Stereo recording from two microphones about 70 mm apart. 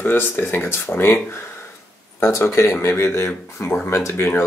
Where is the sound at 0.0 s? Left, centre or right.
Left.